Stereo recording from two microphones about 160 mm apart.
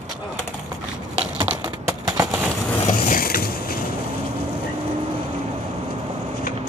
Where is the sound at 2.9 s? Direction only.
60° left (ahead or behind).